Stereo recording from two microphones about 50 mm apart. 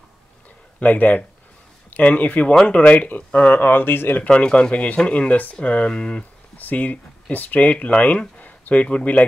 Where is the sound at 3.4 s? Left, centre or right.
Left.